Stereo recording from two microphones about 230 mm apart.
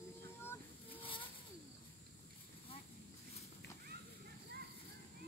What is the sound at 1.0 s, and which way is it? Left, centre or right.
Vehicle, left.